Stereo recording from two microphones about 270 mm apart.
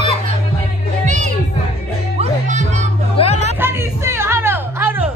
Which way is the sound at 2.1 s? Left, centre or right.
Right.